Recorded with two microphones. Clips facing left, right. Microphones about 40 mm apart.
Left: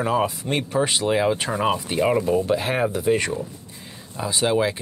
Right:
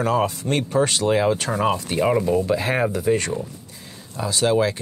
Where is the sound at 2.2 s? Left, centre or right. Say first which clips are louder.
Right 1 dB; left.